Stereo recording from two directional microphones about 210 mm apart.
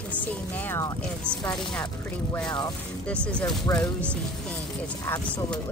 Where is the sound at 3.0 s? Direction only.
5° left (ahead or behind).